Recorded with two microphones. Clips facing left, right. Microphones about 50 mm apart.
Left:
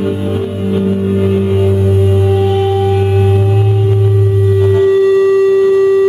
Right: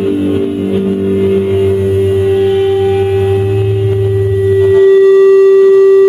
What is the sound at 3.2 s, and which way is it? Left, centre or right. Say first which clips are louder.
Singing bowl: right 2 dB; centre.